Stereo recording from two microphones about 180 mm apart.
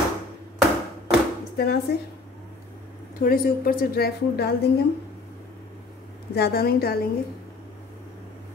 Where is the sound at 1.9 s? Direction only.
65° left (ahead or behind).